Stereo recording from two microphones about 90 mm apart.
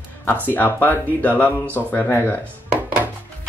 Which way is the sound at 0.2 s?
20° left (ahead or behind).